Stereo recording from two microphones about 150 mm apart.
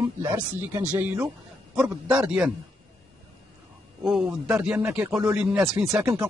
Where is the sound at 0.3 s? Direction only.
15° right (ahead or behind).